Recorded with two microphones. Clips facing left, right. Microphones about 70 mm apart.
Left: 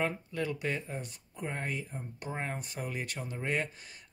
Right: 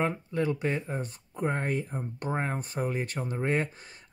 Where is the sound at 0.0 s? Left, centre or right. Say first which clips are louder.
Right 5 dB; right.